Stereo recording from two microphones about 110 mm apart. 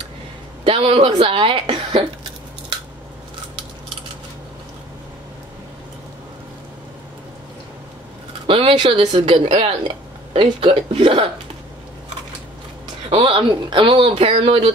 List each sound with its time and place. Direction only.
0.7 s a woman's voice: 60° right (ahead or behind)
8.5 s speech: 55° right (ahead or behind)
13.1 s speech: 60° right (ahead or behind)